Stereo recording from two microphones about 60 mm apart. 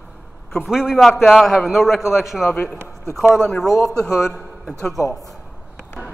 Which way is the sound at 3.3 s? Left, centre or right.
Centre.